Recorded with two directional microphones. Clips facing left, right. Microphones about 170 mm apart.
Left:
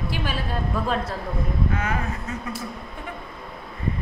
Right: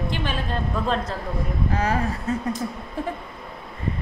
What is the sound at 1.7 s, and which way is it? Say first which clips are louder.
Speech: right 3 dB; 35° right (ahead or behind).